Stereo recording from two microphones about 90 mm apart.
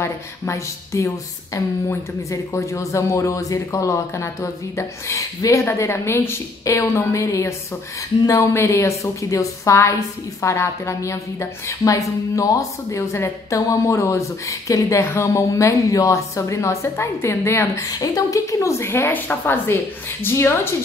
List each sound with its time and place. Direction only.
0.0 s a woman's voice: 35° left (ahead or behind)
17.8 s a woman's voice: 45° left (ahead or behind); by 20.7 s 25° left (ahead or behind)